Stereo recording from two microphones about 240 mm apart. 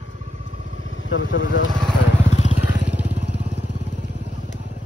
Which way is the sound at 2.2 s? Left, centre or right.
Left.